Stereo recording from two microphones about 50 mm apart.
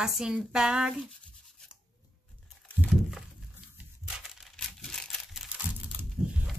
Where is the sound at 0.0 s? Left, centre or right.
Centre.